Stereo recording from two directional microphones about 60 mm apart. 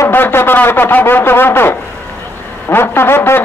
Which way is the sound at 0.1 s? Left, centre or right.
Left.